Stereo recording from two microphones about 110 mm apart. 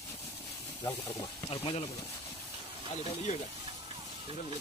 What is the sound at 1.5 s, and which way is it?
Speech, 60° left (ahead or behind).